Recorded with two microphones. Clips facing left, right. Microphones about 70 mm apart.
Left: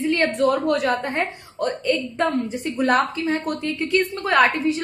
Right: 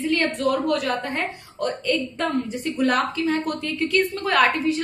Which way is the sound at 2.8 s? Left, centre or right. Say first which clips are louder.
Left 2 dB; left.